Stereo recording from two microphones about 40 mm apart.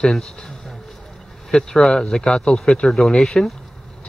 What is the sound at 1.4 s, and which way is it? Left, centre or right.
Speech, centre.